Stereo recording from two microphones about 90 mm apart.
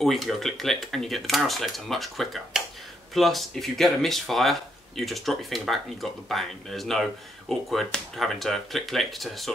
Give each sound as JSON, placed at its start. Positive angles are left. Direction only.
{"t": 0.0, "sound": "speech", "side_deg": 0}